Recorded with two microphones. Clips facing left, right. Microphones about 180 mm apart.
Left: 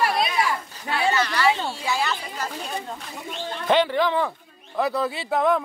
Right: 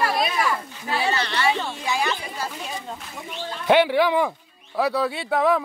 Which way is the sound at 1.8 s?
15° right (ahead or behind).